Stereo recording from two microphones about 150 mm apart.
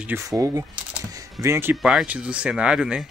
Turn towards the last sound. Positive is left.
turn(degrees=-5)  # may be behind; listen again after turning